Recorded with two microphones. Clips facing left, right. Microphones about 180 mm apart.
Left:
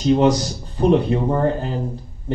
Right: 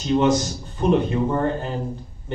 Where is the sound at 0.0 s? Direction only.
35° left (ahead or behind).